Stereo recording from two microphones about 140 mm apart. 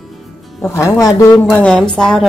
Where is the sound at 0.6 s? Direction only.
20° left (ahead or behind).